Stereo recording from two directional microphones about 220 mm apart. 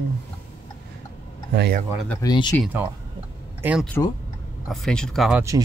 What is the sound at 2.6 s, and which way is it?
Speech, 10° right (ahead or behind).